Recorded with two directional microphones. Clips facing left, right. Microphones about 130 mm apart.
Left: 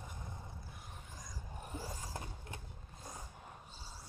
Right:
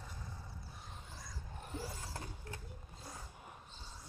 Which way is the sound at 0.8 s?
15° left (ahead or behind).